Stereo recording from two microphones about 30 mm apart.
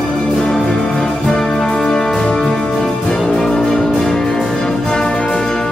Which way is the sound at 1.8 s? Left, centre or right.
Left.